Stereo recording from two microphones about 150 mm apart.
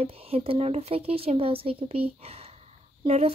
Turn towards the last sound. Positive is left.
turn(degrees=-45)  # may be behind; listen again after turning